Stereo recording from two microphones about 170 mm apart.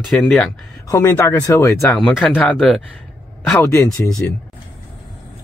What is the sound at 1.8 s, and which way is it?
Speech, 5° left (ahead or behind).